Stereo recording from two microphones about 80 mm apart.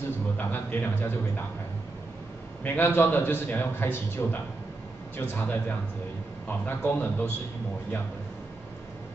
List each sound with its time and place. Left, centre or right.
0.4 s a man's voice: left
2.6 s a man's voice: left